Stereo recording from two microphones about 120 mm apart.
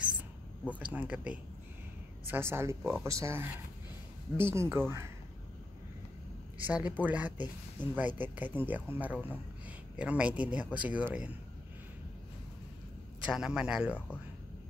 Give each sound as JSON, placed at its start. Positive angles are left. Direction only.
{"t": 0.9, "sound": "speech", "side_deg": -10}
{"t": 6.6, "sound": "speech", "side_deg": -15}
{"t": 13.2, "sound": "speech", "side_deg": -5}